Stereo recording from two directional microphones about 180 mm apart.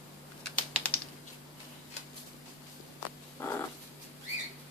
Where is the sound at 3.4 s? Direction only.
15° left (ahead or behind).